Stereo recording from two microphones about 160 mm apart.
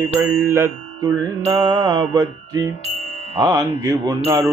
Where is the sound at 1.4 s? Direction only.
30° right (ahead or behind).